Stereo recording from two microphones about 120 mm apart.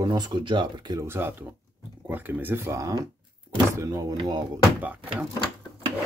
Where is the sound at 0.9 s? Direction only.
20° right (ahead or behind); by 4.5 s 35° right (ahead or behind).